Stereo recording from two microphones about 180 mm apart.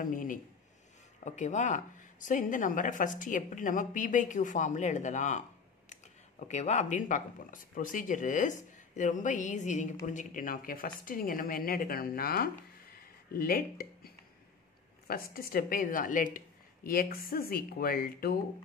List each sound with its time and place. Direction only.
0.0 s speech: 50° left (ahead or behind)
6.4 s speech: 40° left (ahead or behind); by 18.4 s 55° left (ahead or behind)